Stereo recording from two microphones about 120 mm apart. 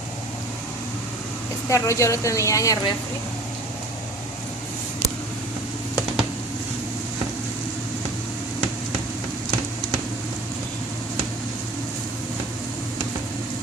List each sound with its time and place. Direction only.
1.7 s a woman's voice: 25° left (ahead or behind)